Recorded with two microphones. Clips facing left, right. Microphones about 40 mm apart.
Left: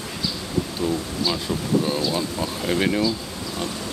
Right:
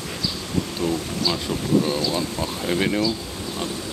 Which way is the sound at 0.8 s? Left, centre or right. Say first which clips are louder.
Even; right.